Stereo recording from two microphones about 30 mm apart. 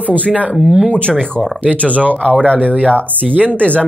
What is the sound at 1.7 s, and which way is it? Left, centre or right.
Speech, right.